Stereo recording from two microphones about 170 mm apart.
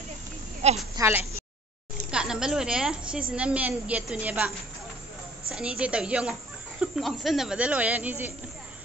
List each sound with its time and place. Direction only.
0.6 s a woman's voice: 40° right (ahead or behind)
0.9 s a woman's voice: 15° right (ahead or behind)
5.5 s a woman's voice: 5° right (ahead or behind)